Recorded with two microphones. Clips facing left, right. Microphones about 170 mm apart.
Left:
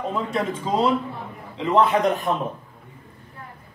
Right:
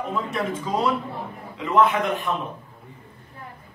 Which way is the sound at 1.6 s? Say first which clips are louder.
Left 2 dB; 30° left (ahead or behind).